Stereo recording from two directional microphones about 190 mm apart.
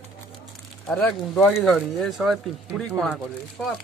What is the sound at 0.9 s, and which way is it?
Speech, 5° left (ahead or behind).